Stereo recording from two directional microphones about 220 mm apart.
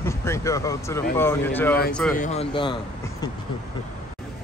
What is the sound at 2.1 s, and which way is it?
Speech, 30° left (ahead or behind).